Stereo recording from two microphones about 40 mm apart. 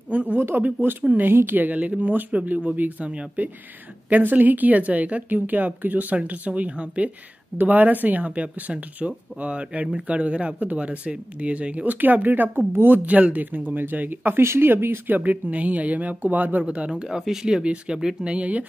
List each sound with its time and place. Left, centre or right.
0.1 s a man's voice: right
1.8 s speech: right
15.0 s speech: right
16.6 s speech: right
17.2 s speech: centre
18.3 s speech: right